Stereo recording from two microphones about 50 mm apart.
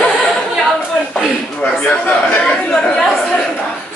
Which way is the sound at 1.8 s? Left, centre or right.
Left.